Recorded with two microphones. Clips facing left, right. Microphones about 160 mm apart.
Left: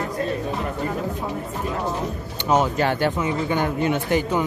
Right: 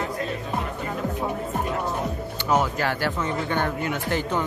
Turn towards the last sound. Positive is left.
turn(degrees=10)  # may be behind; listen again after turning